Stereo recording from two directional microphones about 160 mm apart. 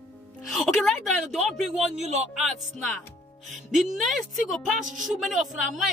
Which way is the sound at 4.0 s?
Centre (ahead or behind).